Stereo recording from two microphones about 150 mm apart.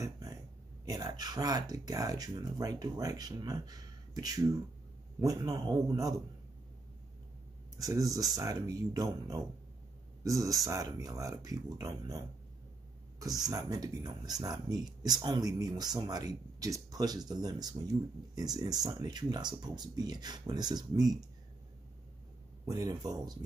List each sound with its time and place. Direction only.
0.0 s a sound: 25° right (ahead or behind)
0.8 s speech: 25° right (ahead or behind)
7.7 s speech: 25° right (ahead or behind)
22.7 s speech: 25° right (ahead or behind)